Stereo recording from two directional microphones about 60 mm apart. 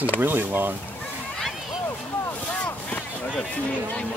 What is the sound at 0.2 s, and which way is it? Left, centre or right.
Speech, right.